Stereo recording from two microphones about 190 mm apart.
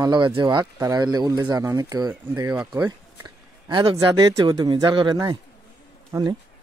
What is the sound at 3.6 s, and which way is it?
Speech, 25° right (ahead or behind).